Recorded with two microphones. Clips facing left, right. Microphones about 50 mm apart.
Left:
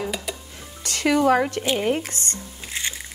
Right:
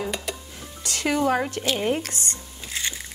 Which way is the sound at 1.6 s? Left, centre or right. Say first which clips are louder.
Left 2 dB; left.